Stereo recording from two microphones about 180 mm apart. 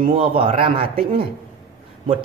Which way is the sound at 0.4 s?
30° right (ahead or behind).